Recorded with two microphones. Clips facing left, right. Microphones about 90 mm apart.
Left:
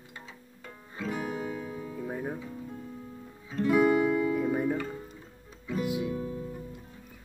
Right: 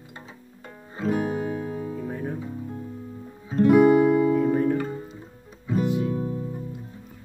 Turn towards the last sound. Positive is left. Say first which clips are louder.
# right 5 dB
turn(degrees=-25)  # may be behind; listen again after turning